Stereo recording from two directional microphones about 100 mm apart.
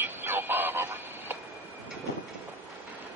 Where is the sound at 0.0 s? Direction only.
20° right (ahead or behind).